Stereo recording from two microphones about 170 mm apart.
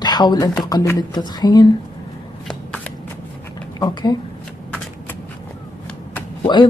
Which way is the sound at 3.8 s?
25° left (ahead or behind).